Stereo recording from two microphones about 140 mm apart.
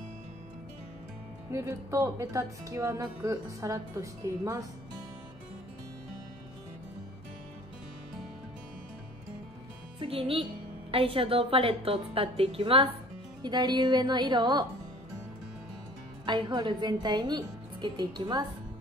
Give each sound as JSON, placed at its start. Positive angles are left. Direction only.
{"t": 1.5, "sound": "speech", "side_deg": -20}
{"t": 9.9, "sound": "a woman's voice", "side_deg": -40}
{"t": 16.3, "sound": "a woman's voice", "side_deg": -35}